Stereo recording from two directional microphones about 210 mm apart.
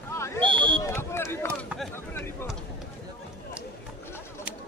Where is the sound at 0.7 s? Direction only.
10° left (ahead or behind).